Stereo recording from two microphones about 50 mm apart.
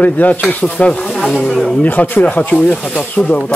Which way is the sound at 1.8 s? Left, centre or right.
Left.